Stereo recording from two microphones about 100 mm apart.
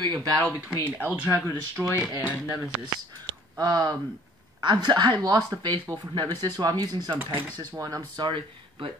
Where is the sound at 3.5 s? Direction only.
40° right (ahead or behind).